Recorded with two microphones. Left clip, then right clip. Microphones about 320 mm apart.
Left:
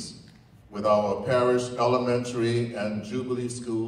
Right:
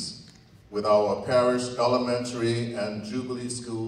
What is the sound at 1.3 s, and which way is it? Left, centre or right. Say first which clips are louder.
A man's voice: even; left.